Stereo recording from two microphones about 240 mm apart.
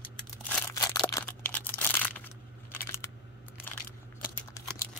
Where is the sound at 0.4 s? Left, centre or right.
Centre.